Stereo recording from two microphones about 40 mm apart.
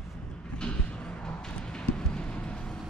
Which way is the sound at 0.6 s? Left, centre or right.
Left.